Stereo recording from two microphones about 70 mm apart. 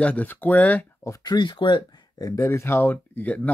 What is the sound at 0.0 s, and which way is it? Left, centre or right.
Speech, left.